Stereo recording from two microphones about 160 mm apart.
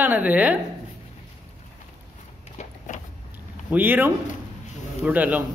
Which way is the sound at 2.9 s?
55° left (ahead or behind).